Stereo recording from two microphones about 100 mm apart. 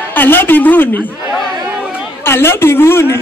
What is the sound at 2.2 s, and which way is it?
A man's voice, 25° left (ahead or behind).